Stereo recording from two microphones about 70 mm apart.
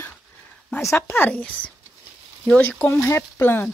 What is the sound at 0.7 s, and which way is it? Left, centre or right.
Speech, left.